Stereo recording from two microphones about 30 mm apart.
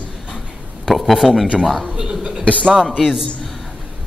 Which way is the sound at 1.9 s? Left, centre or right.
Right.